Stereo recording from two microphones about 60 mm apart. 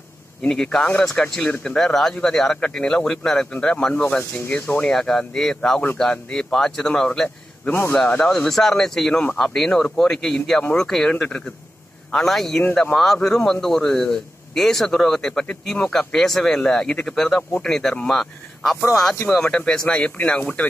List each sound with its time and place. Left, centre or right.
0.4 s a man's voice: centre
4.9 s a man's voice: centre
12.1 s a man's voice: centre